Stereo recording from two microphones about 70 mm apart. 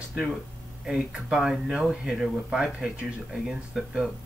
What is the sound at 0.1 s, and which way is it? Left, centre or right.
Speech, centre.